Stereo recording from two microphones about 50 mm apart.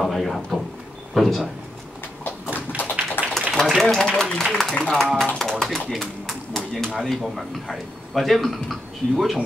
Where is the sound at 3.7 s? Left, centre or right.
Centre.